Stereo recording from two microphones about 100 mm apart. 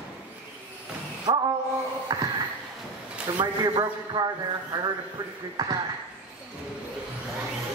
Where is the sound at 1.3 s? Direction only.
45° right (ahead or behind).